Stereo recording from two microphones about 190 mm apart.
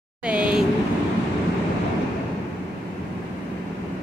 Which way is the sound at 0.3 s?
5° right (ahead or behind).